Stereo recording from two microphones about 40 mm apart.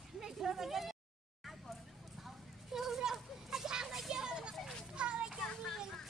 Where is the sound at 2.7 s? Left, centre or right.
Centre.